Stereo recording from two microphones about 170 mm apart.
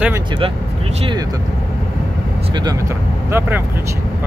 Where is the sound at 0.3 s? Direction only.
30° right (ahead or behind).